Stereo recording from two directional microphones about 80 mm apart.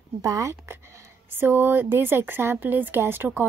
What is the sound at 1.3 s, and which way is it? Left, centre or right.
A woman's voice, right.